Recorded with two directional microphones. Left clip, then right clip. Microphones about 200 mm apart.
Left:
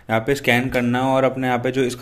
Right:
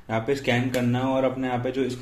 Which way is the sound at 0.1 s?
30° left (ahead or behind).